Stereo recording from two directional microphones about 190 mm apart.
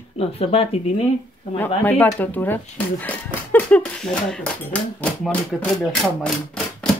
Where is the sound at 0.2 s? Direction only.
30° left (ahead or behind).